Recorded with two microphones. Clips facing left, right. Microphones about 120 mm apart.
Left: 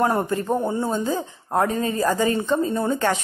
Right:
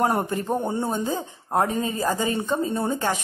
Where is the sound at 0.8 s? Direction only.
20° right (ahead or behind).